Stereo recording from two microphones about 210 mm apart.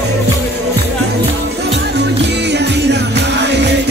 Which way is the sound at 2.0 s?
55° right (ahead or behind).